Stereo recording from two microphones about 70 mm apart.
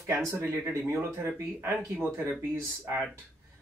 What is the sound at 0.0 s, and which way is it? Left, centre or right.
Speech, right.